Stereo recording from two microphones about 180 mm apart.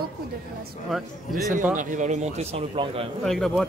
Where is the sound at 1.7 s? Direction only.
45° right (ahead or behind).